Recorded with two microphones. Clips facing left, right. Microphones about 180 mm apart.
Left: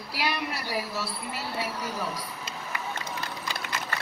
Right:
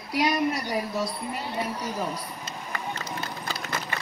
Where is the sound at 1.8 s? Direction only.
15° right (ahead or behind).